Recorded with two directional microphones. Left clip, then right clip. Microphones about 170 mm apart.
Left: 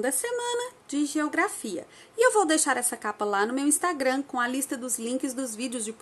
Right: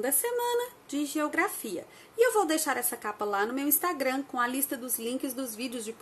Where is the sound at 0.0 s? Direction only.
20° left (ahead or behind).